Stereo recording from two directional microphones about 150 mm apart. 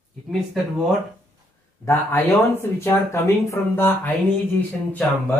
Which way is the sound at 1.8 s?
15° left (ahead or behind).